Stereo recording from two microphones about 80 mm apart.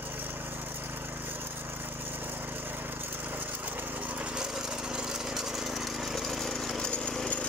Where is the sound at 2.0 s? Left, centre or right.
Right.